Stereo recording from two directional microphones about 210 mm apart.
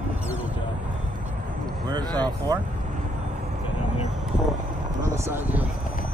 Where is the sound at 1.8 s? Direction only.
20° right (ahead or behind).